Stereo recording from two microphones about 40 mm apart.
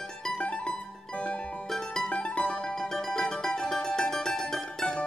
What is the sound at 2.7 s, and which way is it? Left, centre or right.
Music, centre.